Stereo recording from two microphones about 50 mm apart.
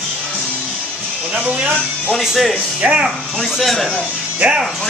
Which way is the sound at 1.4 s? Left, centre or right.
Right.